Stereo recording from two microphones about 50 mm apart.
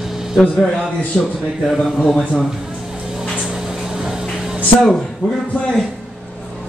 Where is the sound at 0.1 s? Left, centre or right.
Centre.